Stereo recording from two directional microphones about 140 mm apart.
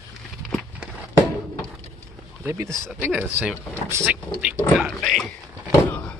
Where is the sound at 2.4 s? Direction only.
20° right (ahead or behind).